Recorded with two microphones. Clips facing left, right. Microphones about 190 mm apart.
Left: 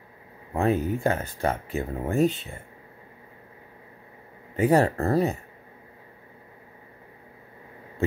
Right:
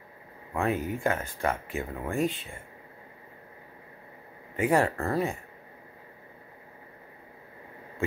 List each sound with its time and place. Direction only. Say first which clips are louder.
0.6 s speech: left 5 dB; 35° left (ahead or behind)
4.6 s speech: left 4 dB; 35° left (ahead or behind)